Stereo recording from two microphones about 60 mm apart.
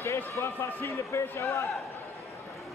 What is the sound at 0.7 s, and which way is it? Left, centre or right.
Speech, left.